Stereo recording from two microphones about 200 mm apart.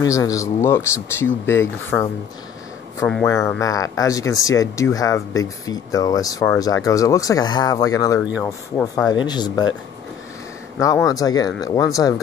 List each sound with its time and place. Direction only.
0.1 s speech: 15° left (ahead or behind)
3.3 s speech: 15° left (ahead or behind)
8.2 s speech: 5° right (ahead or behind)
8.5 s speech: 15° left (ahead or behind)
11.1 s speech: 20° left (ahead or behind)